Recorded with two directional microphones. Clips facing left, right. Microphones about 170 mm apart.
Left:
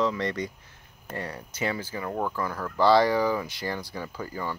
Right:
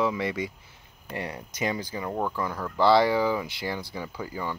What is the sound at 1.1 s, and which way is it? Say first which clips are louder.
Speech: right 1 dB; 15° right (ahead or behind).